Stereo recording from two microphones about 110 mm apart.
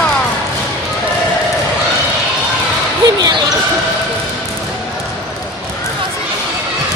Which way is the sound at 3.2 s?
35° right (ahead or behind).